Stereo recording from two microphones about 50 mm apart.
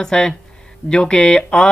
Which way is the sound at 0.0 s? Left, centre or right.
Centre.